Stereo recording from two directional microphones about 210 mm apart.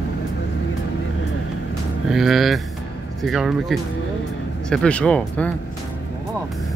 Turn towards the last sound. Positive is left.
turn(degrees=5)  # may be behind; listen again after turning